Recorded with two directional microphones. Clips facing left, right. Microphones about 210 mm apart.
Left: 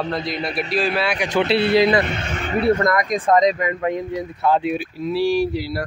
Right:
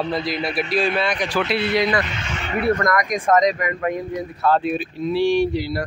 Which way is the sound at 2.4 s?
30° left (ahead or behind).